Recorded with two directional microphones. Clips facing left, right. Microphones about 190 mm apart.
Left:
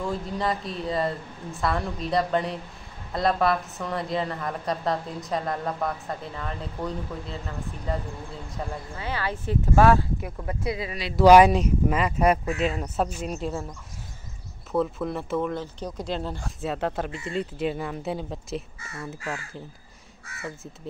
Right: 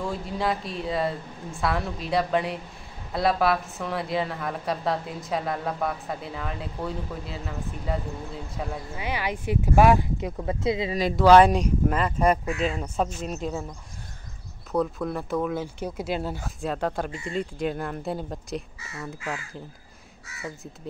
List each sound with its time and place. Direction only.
0.0 s a woman's voice: centre (ahead or behind); by 11.0 s 25° right (ahead or behind)
11.2 s a woman's voice: 10° left (ahead or behind)
14.7 s a woman's voice: centre (ahead or behind)